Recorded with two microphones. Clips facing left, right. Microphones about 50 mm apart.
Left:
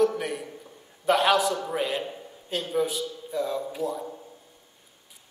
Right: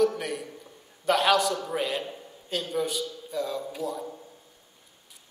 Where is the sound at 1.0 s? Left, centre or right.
Centre.